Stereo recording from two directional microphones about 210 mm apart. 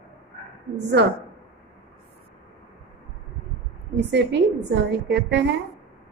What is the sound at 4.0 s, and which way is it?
A woman's voice, 55° right (ahead or behind).